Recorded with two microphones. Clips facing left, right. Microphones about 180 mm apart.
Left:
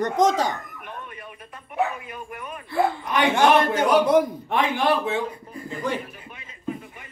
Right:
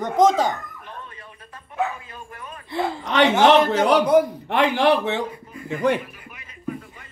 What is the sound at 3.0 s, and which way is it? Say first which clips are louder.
A man's voice: right 5 dB; 80° right.